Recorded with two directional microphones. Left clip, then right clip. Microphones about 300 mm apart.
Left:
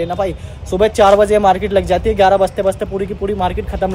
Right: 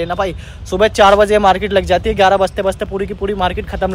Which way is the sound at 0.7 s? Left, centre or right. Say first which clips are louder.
Right 1 dB; right.